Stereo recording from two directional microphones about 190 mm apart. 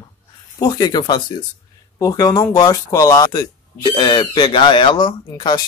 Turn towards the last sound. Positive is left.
turn(degrees=25)  # may be behind; listen again after turning